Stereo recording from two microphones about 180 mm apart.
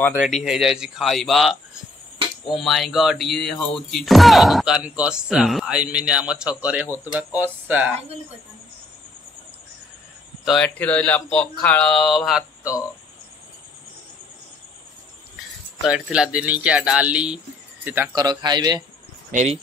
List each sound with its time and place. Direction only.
0.2 s speech: 5° right (ahead or behind)
10.4 s speech: 5° left (ahead or behind)
15.8 s speech: 5° right (ahead or behind); by 18.9 s 25° right (ahead or behind)
19.3 s speech: 35° right (ahead or behind)